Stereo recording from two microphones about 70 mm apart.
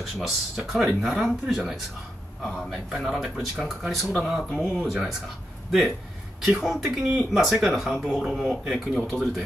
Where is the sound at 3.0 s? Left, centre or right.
Centre.